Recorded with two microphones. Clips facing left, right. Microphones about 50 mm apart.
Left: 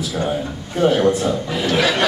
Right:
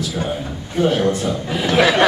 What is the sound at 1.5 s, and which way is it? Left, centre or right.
Speech, centre.